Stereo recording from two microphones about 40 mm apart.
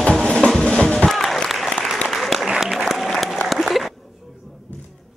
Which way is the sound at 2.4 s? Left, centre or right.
Centre.